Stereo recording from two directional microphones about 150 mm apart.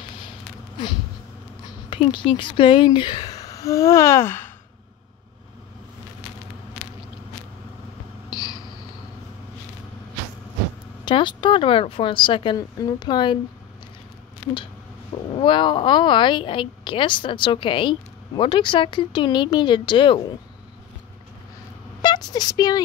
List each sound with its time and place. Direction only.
1.9 s speech: 35° left (ahead or behind); by 4.5 s 15° left (ahead or behind)
8.3 s a sound: 30° left (ahead or behind)
11.1 s a woman's voice: 30° left (ahead or behind)
15.3 s a woman's voice: 35° left (ahead or behind)
22.0 s speech: 30° left (ahead or behind)